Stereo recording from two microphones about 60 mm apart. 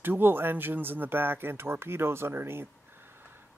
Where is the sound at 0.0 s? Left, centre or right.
Right.